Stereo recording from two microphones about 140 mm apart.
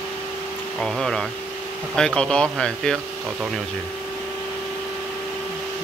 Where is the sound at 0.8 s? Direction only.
5° left (ahead or behind).